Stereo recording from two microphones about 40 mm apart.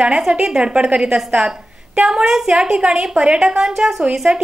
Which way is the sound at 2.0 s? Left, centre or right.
Centre.